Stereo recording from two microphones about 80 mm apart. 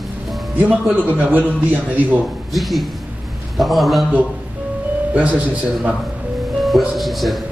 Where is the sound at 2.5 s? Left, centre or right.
Centre.